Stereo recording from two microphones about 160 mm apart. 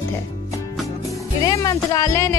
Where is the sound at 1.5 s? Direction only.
25° left (ahead or behind).